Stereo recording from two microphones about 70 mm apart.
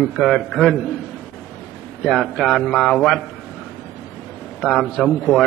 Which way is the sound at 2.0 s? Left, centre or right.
Centre.